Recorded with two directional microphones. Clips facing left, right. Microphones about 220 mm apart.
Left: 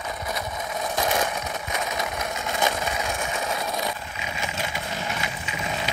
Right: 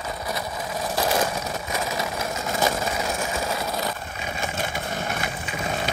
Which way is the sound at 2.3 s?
35° right (ahead or behind).